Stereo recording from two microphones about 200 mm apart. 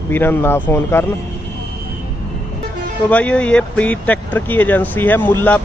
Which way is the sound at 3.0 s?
5° left (ahead or behind).